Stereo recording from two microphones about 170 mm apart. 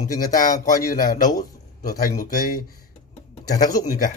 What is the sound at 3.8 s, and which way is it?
Speech, 50° left (ahead or behind).